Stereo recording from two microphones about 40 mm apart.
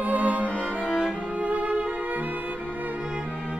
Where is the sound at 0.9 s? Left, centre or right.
Right.